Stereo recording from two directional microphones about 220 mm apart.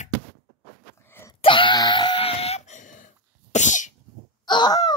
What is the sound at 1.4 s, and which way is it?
Wail, 25° left (ahead or behind).